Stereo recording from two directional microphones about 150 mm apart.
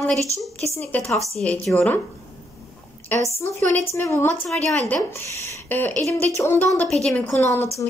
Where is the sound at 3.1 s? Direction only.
10° left (ahead or behind).